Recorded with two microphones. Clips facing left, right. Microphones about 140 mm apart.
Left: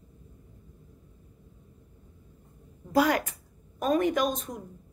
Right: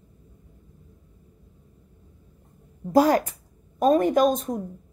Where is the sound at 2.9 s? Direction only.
40° right (ahead or behind).